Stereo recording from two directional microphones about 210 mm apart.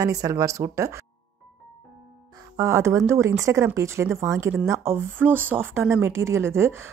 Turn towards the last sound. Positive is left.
turn(degrees=-10)  # may be behind; listen again after turning